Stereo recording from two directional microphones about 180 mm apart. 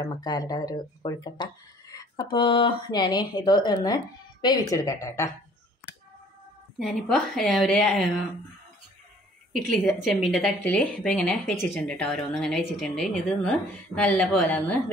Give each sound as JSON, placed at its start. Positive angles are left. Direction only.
{"t": 0.0, "sound": "speech", "side_deg": 20}
{"t": 6.8, "sound": "speech", "side_deg": 0}
{"t": 9.5, "sound": "speech", "side_deg": 5}